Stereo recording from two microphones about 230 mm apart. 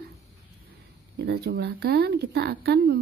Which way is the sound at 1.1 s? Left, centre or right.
Right.